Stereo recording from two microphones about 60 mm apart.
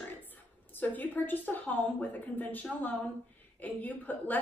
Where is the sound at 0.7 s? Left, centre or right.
Left.